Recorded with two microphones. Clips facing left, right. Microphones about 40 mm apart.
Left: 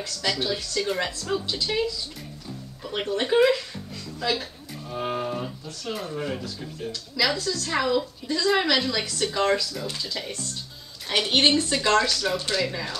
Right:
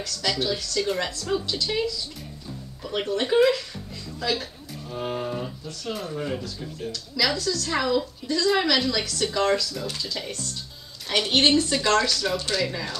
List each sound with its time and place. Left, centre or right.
0.3 s a woman's voice: centre
1.4 s a woman's voice: centre
2.8 s a woman's voice: centre
4.2 s a sound: centre
5.9 s a woman's voice: centre